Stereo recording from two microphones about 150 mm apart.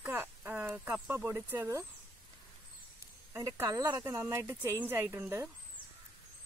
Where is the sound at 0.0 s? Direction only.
15° right (ahead or behind).